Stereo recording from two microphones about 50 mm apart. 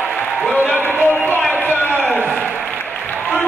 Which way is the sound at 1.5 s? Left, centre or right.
Left.